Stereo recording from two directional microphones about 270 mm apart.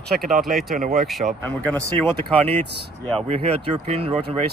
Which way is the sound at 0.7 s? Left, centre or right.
Right.